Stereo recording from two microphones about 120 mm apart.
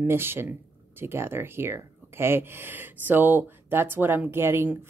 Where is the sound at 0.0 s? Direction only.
20° right (ahead or behind).